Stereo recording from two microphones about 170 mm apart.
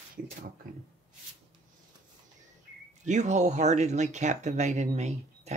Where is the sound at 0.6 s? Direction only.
60° right (ahead or behind).